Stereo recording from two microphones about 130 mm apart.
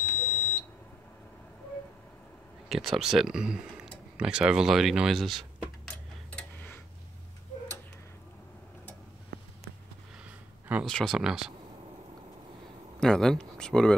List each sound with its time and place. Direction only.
0.0 s smoke detector: 20° left (ahead or behind)
2.7 s speech: centre (ahead or behind)
10.9 s speech: centre (ahead or behind)
13.0 s speech: 5° left (ahead or behind)